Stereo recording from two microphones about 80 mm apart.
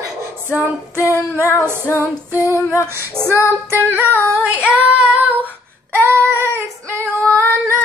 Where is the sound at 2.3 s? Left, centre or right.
Right.